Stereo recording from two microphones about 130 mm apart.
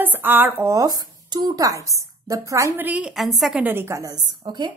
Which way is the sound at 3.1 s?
Centre (ahead or behind).